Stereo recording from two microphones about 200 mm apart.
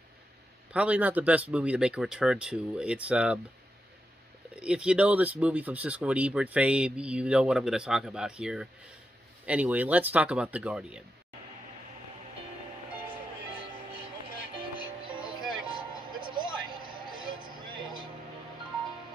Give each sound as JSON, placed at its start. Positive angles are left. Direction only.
{"t": 0.7, "sound": "speech", "side_deg": -5}
{"t": 4.6, "sound": "speech", "side_deg": -5}
{"t": 15.0, "sound": "music", "side_deg": -25}
{"t": 15.6, "sound": "vehicle", "side_deg": -25}